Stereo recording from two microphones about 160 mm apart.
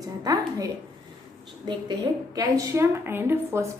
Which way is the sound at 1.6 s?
25° right (ahead or behind).